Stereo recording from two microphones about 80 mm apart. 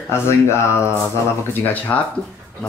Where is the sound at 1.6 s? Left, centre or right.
Left.